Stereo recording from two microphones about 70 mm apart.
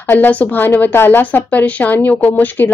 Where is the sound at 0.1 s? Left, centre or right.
Left.